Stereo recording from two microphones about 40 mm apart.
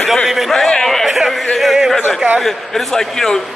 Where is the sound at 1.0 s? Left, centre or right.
Centre.